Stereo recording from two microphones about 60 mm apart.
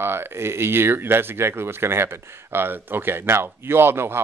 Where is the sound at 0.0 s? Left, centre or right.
Right.